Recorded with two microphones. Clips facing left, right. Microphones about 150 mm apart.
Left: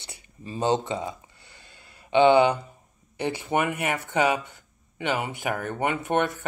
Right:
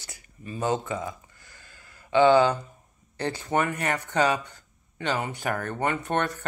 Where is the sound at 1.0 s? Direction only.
20° left (ahead or behind).